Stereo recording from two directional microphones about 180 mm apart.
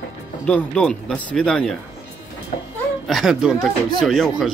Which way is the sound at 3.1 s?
Centre (ahead or behind).